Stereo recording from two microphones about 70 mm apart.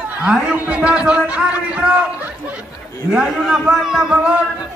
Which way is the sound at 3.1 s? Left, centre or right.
Centre.